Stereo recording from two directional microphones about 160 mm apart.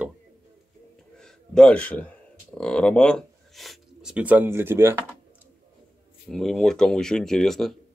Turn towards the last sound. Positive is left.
turn(degrees=0)  # may be behind; listen again after turning